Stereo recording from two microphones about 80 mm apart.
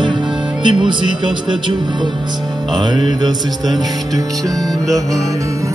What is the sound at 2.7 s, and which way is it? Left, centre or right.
Music, right.